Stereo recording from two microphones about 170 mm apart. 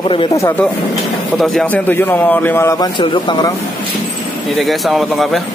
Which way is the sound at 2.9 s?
30° left (ahead or behind).